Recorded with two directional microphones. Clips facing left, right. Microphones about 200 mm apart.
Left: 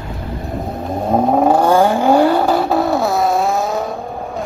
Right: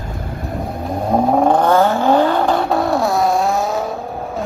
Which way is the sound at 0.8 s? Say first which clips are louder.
Left 1 dB; 5° left (ahead or behind).